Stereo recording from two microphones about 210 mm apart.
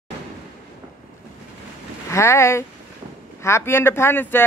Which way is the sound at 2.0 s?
15° left (ahead or behind).